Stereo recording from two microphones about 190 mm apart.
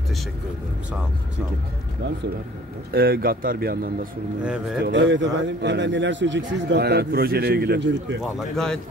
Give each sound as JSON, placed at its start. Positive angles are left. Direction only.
{"t": 2.9, "sound": "speech", "side_deg": -50}
{"t": 4.4, "sound": "speech", "side_deg": -5}
{"t": 4.8, "sound": "a man's voice", "side_deg": -70}
{"t": 8.2, "sound": "speech", "side_deg": 0}